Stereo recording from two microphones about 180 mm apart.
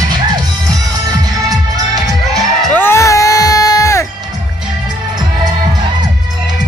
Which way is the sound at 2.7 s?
15° left (ahead or behind).